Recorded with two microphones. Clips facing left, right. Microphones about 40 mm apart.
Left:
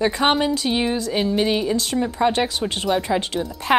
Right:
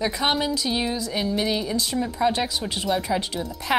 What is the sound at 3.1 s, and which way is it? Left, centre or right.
Speech, left.